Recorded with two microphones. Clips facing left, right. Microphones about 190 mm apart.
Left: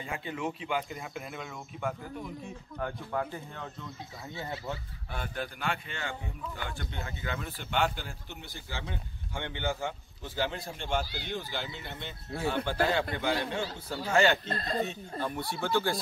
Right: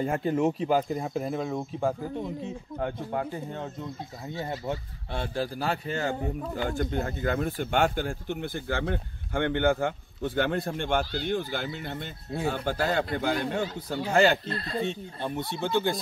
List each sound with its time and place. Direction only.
0.0 s speech: 45° right (ahead or behind); by 3.6 s 25° right (ahead or behind)
4.6 s speech: 25° right (ahead or behind)
14.5 s speech: 40° left (ahead or behind)
14.8 s speech: 25° right (ahead or behind)